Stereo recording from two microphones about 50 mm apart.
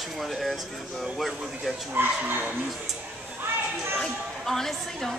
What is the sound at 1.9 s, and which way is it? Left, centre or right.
Speech, right.